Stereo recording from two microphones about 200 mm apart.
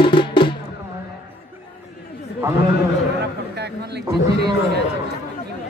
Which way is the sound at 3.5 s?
55° right (ahead or behind).